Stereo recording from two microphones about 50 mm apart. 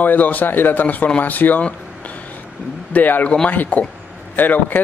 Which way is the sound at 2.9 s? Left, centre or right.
Left.